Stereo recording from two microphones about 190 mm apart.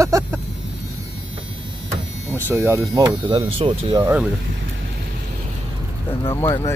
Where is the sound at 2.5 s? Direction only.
15° right (ahead or behind).